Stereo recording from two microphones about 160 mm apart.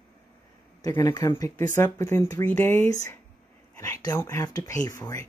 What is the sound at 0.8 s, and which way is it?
Speech, 20° left (ahead or behind).